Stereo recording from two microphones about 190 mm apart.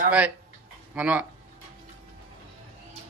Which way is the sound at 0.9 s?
10° right (ahead or behind).